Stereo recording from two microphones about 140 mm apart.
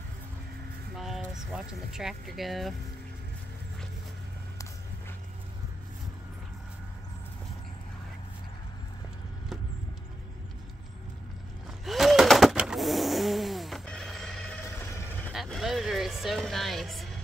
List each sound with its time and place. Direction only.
0.9 s speech: centre (ahead or behind)
11.8 s a sound: centre (ahead or behind)
14.6 s vehicle: 20° left (ahead or behind)
15.3 s vehicle: centre (ahead or behind)